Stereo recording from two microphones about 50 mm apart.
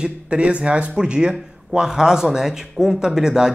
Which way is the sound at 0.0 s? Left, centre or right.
Centre.